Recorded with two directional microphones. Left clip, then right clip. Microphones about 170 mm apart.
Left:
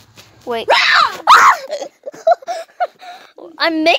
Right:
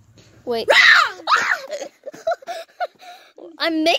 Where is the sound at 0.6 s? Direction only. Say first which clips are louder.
Left 1 dB; 25° right (ahead or behind).